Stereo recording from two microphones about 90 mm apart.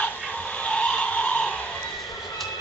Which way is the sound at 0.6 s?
10° left (ahead or behind).